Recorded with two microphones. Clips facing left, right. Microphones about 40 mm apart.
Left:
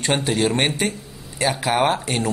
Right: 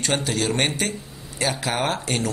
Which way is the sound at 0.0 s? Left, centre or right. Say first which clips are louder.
Left 3 dB; centre.